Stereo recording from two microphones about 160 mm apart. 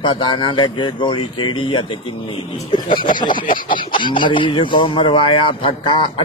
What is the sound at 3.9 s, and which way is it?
Speech, 30° left (ahead or behind).